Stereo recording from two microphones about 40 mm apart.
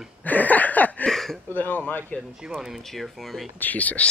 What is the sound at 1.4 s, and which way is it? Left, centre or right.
Speech, left.